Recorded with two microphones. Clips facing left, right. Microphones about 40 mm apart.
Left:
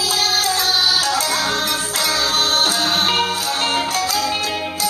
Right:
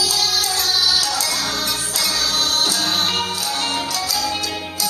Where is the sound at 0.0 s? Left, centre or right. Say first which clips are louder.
Left 2 dB; left.